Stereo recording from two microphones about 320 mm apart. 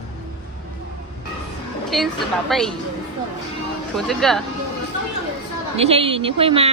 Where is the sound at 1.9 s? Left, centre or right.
Centre.